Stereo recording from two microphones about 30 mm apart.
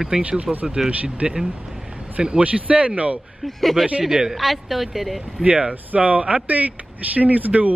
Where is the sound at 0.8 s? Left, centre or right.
Right.